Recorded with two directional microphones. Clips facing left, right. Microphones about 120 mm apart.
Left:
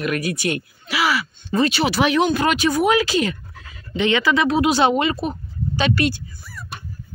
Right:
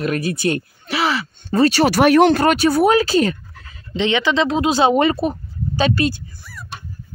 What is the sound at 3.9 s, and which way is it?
Speech, 20° right (ahead or behind).